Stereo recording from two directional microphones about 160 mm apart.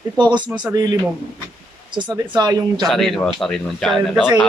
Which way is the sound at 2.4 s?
25° right (ahead or behind).